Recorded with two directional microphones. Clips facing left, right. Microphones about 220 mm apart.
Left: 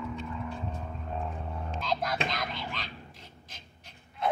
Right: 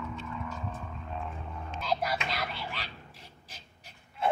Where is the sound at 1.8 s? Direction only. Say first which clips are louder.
Right 1 dB; 10° right (ahead or behind).